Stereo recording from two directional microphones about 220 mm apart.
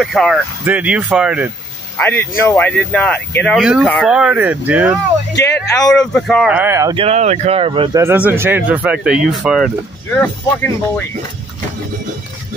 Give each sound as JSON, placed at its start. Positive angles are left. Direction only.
{"t": 0.0, "sound": "speech", "side_deg": 0}
{"t": 2.0, "sound": "speech", "side_deg": 10}
{"t": 7.0, "sound": "speech", "side_deg": -30}
{"t": 8.0, "sound": "speech", "side_deg": -10}